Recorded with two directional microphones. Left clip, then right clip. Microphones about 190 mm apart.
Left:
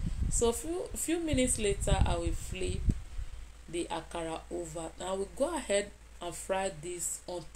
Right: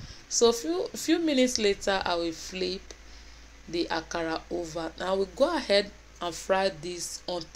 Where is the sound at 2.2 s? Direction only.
45° right (ahead or behind).